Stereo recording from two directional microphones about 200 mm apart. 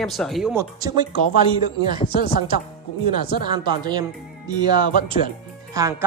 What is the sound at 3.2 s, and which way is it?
Speech, 20° right (ahead or behind).